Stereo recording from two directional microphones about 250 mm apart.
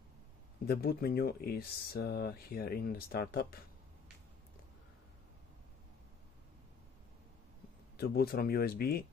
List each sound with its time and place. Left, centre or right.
0.7 s speech: left
8.0 s speech: left